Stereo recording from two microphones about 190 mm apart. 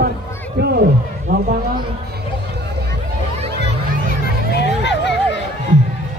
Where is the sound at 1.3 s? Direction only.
55° right (ahead or behind).